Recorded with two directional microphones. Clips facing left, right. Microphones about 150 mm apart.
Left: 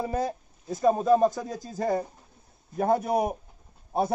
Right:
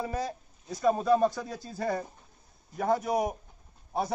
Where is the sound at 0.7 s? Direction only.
25° left (ahead or behind).